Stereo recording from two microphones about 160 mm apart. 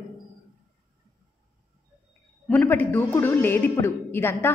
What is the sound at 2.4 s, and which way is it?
A woman's voice, 5° left (ahead or behind).